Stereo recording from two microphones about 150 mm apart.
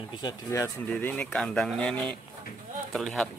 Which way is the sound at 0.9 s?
10° left (ahead or behind).